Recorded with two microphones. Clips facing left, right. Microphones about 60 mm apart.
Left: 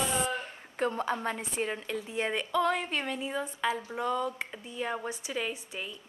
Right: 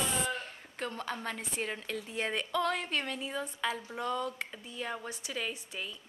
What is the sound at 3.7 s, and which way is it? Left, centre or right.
A woman's voice, centre.